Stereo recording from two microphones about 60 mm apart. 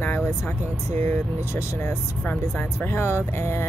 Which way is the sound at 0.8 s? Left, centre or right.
Left.